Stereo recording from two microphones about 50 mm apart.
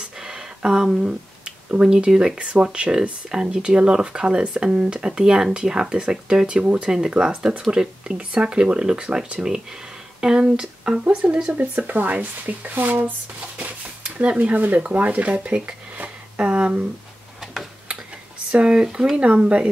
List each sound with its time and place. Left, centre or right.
0.2 s a sound: centre
0.9 s speech: centre
6.6 s speech: right
11.5 s speech: right
13.6 s a sound: right
14.4 s speech: right
18.5 s speech: right